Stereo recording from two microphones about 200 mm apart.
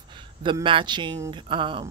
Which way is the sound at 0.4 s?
25° right (ahead or behind).